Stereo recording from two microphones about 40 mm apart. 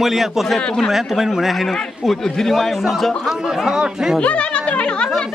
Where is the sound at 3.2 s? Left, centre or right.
Centre.